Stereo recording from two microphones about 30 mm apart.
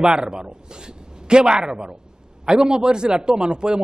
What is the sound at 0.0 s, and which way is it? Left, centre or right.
Speech, right.